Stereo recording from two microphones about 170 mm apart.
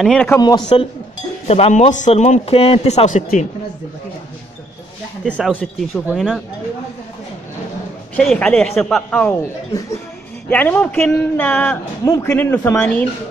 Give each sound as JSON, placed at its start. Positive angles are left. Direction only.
{"t": 0.0, "sound": "a man's voice", "side_deg": 5}
{"t": 0.4, "sound": "a man's voice", "side_deg": 25}
{"t": 1.5, "sound": "speech", "side_deg": 40}
{"t": 5.5, "sound": "a man's voice", "side_deg": 5}
{"t": 8.2, "sound": "a man's voice", "side_deg": 5}
{"t": 10.5, "sound": "speech", "side_deg": 10}
{"t": 12.0, "sound": "a man's voice", "side_deg": 20}